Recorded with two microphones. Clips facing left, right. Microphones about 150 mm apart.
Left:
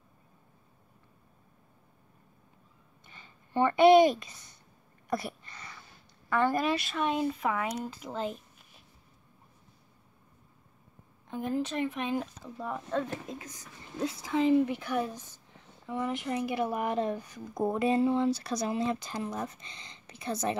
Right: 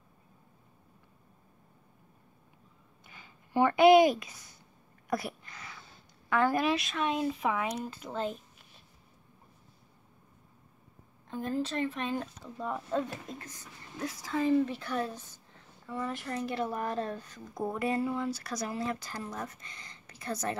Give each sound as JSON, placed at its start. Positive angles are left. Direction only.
{"t": 3.1, "sound": "speech", "side_deg": -5}
{"t": 5.1, "sound": "a sound", "side_deg": 0}
{"t": 6.2, "sound": "speech", "side_deg": 0}
{"t": 11.2, "sound": "speech", "side_deg": 15}
{"t": 12.5, "sound": "speech", "side_deg": 0}
{"t": 14.0, "sound": "speech", "side_deg": 20}